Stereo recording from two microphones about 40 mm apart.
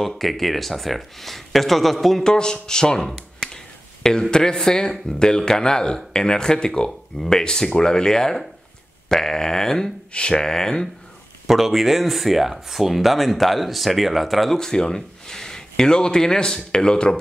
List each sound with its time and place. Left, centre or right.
0.0 s speech: centre
2.2 s speech: centre
3.3 s finger snapping: centre
5.2 s speech: centre
11.4 s speech: centre
14.6 s speech: centre